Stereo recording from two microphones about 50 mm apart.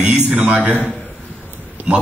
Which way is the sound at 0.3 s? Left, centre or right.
Right.